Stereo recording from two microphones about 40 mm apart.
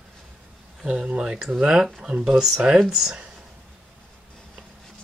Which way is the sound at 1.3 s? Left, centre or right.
Centre.